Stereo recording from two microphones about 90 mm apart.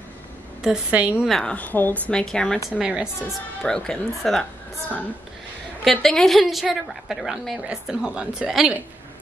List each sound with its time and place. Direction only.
0.6 s a woman's voice: 10° right (ahead or behind)
1.2 s a woman's voice: centre (ahead or behind)
1.5 s a woman's voice: 20° left (ahead or behind)
2.1 s a woman's voice: 10° left (ahead or behind)
2.8 s a woman's voice: 10° right (ahead or behind)
3.6 s a woman's voice: 10° left (ahead or behind)